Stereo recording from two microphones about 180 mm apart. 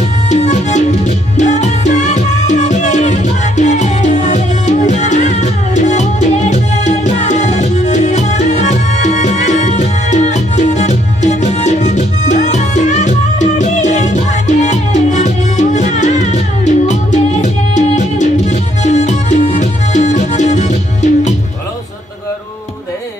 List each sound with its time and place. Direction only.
0.3 s music: 40° left (ahead or behind)